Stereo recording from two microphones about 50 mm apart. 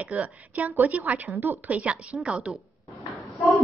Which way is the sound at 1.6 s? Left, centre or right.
Right.